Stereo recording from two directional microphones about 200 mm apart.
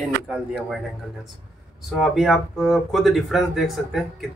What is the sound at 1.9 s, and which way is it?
Speech, centre (ahead or behind).